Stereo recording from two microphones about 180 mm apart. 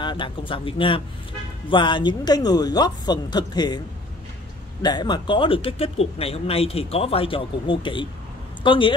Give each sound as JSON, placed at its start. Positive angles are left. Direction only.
{"t": 0.0, "sound": "speech", "side_deg": 25}
{"t": 4.8, "sound": "speech", "side_deg": 25}